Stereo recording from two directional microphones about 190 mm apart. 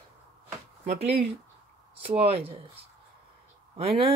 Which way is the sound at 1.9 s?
30° right (ahead or behind).